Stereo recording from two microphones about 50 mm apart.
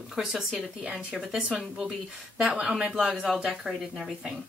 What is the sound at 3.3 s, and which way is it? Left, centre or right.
Speech, centre.